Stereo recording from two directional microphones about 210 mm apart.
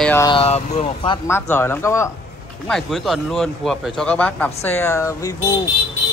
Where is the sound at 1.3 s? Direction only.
10° left (ahead or behind).